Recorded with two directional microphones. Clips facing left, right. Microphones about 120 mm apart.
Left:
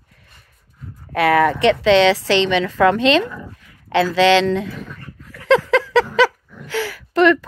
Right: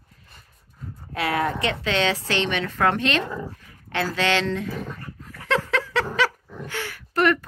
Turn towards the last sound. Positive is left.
turn(degrees=90)